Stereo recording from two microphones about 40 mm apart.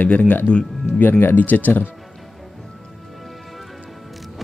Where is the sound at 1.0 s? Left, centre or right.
Left.